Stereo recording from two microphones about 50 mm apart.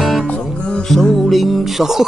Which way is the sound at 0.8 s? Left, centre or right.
Centre.